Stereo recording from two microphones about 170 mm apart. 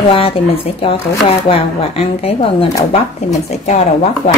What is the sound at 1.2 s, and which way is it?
A woman's voice, 35° left (ahead or behind).